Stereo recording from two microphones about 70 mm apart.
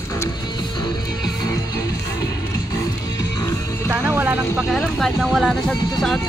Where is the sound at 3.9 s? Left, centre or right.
Right.